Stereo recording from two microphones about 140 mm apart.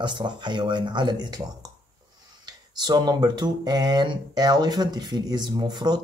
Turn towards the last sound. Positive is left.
turn(degrees=-30)  # may be behind; listen again after turning